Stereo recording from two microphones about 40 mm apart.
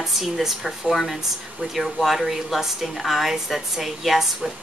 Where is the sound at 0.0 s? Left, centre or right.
Centre.